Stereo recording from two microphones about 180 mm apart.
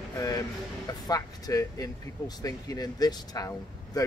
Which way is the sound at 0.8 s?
20° left (ahead or behind).